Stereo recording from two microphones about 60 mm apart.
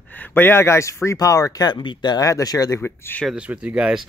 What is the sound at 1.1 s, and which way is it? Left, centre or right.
A man's voice, left.